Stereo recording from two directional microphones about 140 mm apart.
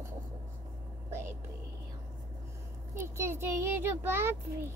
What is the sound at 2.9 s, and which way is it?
A child's voice, 15° right (ahead or behind).